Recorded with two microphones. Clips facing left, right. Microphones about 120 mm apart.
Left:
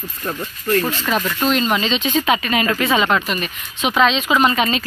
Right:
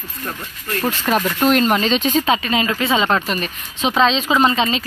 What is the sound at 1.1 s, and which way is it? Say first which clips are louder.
Speech: right 4 dB; 40° right (ahead or behind).